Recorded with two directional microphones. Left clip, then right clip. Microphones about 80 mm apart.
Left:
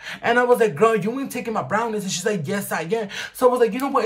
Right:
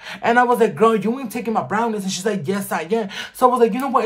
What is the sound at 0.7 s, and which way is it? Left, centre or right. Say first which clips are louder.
Speech: right 2 dB; right.